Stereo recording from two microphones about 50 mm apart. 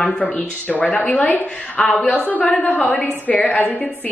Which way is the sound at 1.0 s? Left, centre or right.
Left.